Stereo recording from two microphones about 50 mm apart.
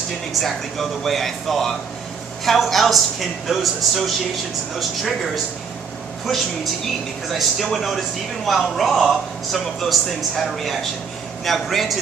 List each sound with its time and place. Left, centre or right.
0.4 s a man's voice: centre